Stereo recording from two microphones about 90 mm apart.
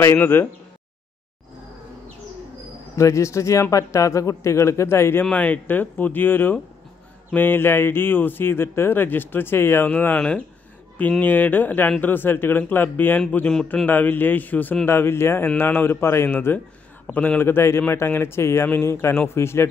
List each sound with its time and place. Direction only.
0.0 s speech: 25° left (ahead or behind)
3.0 s a man's voice: 35° left (ahead or behind)
5.2 s speech: 15° left (ahead or behind)